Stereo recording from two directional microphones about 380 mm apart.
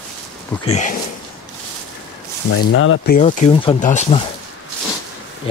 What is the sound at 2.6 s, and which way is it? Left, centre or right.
Speech, left.